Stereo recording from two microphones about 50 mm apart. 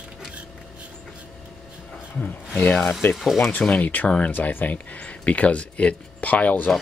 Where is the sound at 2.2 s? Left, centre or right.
Left.